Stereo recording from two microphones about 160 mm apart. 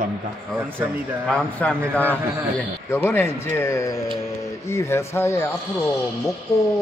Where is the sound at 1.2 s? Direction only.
5° left (ahead or behind).